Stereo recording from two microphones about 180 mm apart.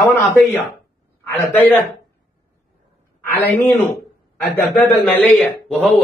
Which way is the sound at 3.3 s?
10° left (ahead or behind).